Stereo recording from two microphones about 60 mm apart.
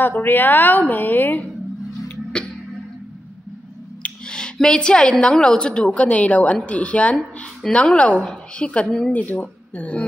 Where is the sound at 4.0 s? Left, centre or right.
Centre.